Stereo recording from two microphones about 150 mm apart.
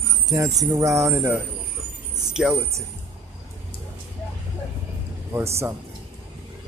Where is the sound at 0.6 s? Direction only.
20° right (ahead or behind).